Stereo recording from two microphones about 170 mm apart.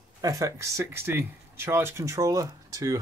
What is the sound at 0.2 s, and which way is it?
Speech, 20° right (ahead or behind).